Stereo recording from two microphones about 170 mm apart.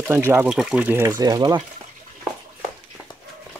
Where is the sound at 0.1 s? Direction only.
15° right (ahead or behind).